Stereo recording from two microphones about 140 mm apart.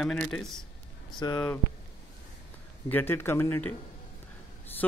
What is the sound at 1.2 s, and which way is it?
Speech, 30° left (ahead or behind).